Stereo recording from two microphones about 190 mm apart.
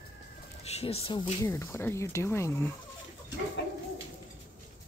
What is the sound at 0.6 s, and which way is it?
Speech, 35° left (ahead or behind).